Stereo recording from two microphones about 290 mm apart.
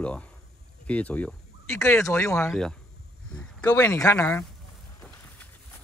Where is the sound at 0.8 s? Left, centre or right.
Centre.